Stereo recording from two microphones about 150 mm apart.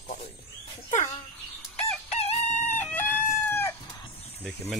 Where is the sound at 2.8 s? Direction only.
10° left (ahead or behind).